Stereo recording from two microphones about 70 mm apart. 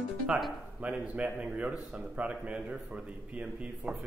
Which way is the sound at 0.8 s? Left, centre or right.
Centre.